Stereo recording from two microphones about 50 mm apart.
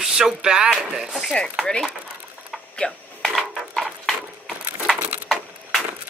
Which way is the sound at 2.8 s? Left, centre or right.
Centre.